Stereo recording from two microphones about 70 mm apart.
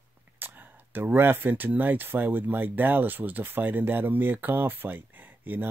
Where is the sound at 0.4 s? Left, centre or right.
Right.